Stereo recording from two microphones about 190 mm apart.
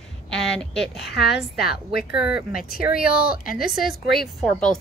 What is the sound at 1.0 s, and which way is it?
Speech, 60° left (ahead or behind).